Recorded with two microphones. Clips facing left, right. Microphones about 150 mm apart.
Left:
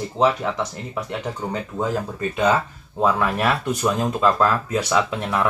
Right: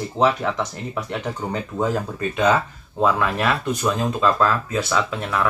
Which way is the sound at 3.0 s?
10° left (ahead or behind).